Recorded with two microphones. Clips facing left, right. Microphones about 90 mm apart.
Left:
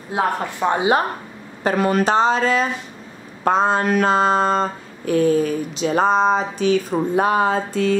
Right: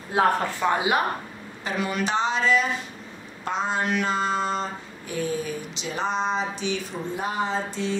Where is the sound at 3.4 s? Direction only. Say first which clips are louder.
Left 9 dB; 45° left (ahead or behind).